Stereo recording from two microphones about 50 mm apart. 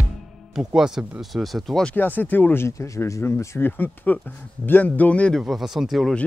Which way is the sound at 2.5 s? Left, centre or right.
Left.